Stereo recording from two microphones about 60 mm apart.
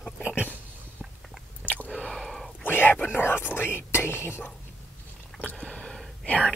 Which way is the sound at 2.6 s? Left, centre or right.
Left.